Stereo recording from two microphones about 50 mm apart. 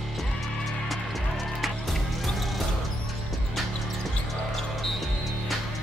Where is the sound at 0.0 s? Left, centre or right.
Centre.